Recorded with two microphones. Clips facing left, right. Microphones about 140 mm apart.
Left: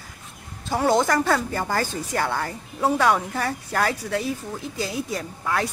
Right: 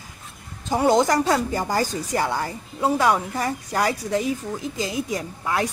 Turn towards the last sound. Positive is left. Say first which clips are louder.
# right 1 dB
turn(degrees=-15)  # may be behind; listen again after turning